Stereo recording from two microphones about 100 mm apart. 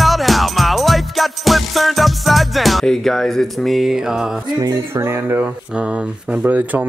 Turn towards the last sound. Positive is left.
turn(degrees=-15)  # may be behind; listen again after turning